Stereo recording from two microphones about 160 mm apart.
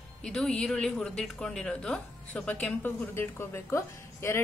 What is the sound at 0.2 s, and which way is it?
A woman's voice, 5° left (ahead or behind).